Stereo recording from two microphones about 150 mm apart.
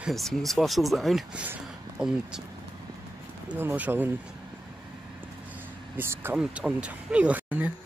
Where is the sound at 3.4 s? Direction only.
10° right (ahead or behind).